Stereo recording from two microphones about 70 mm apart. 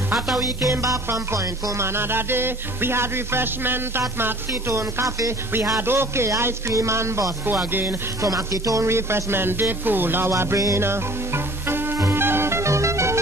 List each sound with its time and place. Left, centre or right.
0.4 s music: right
5.8 s a man's voice: right
8.2 s music: right
10.3 s music: right